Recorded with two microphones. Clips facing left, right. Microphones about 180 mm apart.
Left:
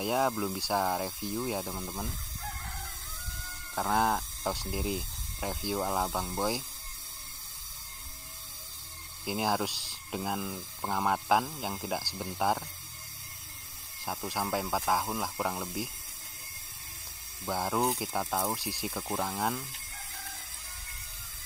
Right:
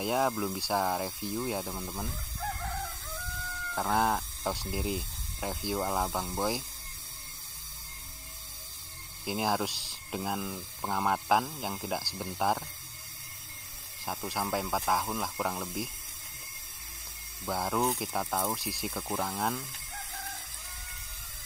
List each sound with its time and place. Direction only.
0.0 s speech: centre (ahead or behind)
3.7 s speech: centre (ahead or behind)
9.2 s speech: centre (ahead or behind)
14.0 s speech: centre (ahead or behind)
17.5 s speech: centre (ahead or behind)